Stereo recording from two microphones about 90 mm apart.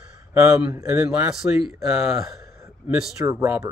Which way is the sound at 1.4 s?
20° right (ahead or behind).